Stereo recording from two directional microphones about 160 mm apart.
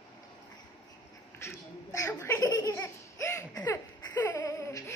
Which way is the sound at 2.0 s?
15° left (ahead or behind).